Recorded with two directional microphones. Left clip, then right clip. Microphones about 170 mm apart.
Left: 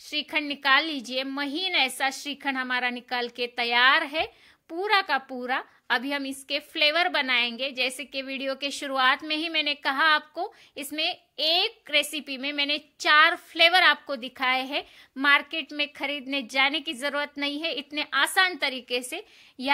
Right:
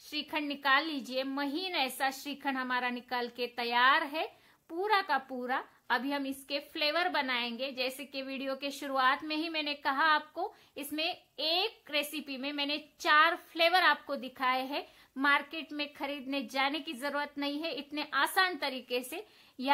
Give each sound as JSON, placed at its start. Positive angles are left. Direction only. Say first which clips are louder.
{"t": 0.1, "sound": "a woman's voice", "louder": "left 7 dB", "side_deg": 15}